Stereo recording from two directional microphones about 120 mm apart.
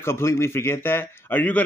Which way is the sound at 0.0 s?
20° left (ahead or behind).